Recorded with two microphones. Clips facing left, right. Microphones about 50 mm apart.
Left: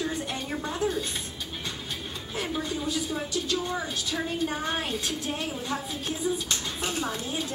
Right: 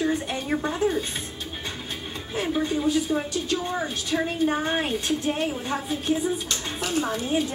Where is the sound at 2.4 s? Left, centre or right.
Right.